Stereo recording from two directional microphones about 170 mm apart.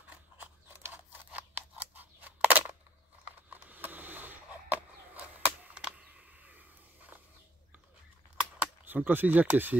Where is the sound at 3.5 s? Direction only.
10° right (ahead or behind).